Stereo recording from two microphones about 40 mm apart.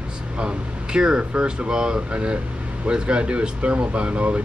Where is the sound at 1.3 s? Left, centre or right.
Right.